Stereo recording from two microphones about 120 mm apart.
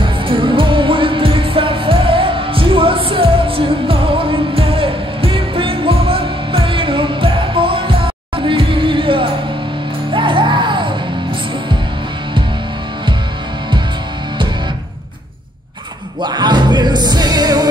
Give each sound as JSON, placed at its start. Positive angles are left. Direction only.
{"t": 0.3, "sound": "music", "side_deg": -45}
{"t": 16.2, "sound": "music", "side_deg": -35}